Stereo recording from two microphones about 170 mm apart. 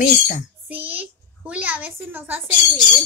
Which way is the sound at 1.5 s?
10° right (ahead or behind).